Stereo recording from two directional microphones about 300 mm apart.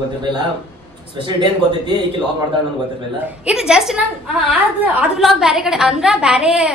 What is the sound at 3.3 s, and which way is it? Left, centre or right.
Speech, centre.